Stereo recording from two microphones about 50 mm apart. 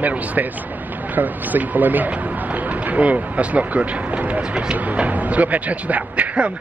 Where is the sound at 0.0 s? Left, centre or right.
Right.